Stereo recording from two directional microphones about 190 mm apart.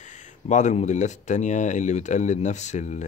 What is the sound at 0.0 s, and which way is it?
Speech, 40° left (ahead or behind).